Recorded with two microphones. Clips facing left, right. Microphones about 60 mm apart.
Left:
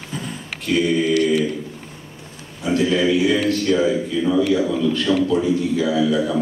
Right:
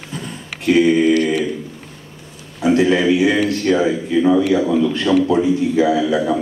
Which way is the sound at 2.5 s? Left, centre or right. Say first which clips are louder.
Right 4 dB; right.